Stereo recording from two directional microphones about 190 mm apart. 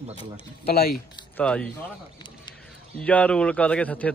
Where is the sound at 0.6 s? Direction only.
55° left (ahead or behind).